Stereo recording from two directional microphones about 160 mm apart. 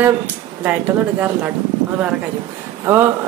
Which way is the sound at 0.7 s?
10° right (ahead or behind).